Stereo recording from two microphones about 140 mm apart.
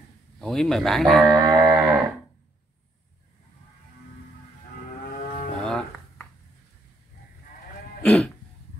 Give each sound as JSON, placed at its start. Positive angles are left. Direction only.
{"t": 0.4, "sound": "speech", "side_deg": 5}
{"t": 1.4, "sound": "a sound", "side_deg": -25}
{"t": 5.6, "sound": "music", "side_deg": 5}
{"t": 8.0, "sound": "cough", "side_deg": 10}